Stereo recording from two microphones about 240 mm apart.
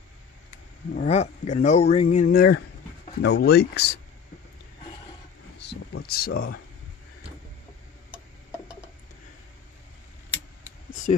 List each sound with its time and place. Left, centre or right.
0.9 s speech: left
5.6 s speech: left